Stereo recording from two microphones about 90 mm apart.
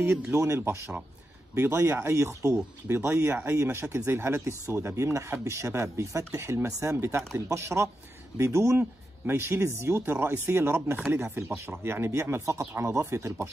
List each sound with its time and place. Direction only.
0.0 s speech: 30° right (ahead or behind)